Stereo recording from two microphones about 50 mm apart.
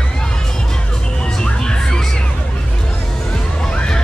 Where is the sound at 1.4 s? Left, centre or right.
Centre.